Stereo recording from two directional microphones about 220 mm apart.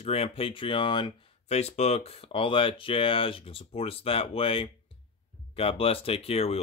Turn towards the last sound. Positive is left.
turn(degrees=25)  # may be behind; listen again after turning